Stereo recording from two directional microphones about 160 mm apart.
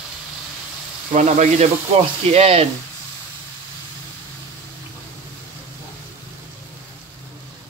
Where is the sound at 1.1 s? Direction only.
50° right (ahead or behind).